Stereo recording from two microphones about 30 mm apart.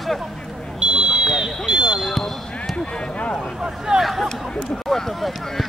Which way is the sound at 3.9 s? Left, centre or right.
Centre.